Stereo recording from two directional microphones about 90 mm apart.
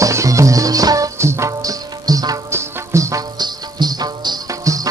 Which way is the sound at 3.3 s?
50° right (ahead or behind).